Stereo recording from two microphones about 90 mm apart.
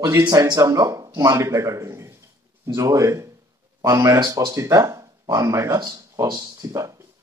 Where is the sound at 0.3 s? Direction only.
40° right (ahead or behind).